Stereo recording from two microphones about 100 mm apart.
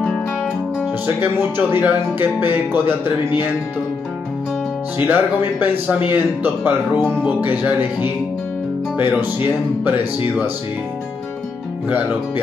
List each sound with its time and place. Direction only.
1.0 s speech: 20° right (ahead or behind)
4.9 s speech: 20° right (ahead or behind)